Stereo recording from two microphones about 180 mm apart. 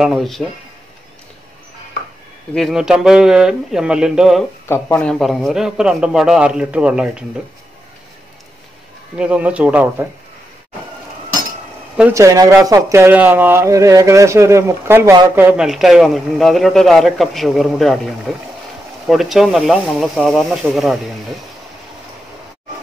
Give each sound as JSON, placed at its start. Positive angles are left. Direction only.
{"t": 0.0, "sound": "a man's voice", "side_deg": 0}
{"t": 2.5, "sound": "a man's voice", "side_deg": 0}
{"t": 4.6, "sound": "speech", "side_deg": 15}
{"t": 5.2, "sound": "a man's voice", "side_deg": 0}
{"t": 9.1, "sound": "speech", "side_deg": -5}
{"t": 12.0, "sound": "a man's voice", "side_deg": -15}